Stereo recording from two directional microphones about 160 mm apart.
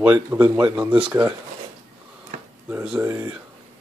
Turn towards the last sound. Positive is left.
turn(degrees=-10)  # may be behind; listen again after turning